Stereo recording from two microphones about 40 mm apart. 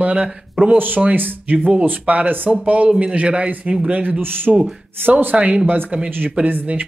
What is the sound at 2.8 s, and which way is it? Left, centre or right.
Speech, right.